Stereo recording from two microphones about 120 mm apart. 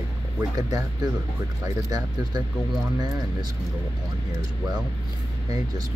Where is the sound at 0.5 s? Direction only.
30° right (ahead or behind).